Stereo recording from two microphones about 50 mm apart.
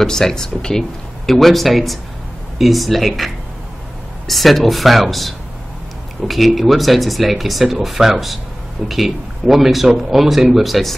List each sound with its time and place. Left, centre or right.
0.0 s speech: centre
4.3 s speech: centre